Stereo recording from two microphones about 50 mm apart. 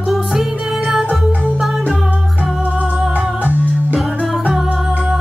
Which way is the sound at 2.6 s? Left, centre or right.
Right.